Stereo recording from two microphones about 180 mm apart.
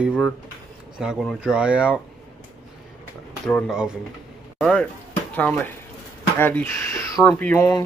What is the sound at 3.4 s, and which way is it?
Speech, 5° left (ahead or behind).